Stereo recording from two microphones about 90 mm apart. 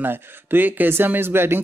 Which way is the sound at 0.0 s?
25° right (ahead or behind).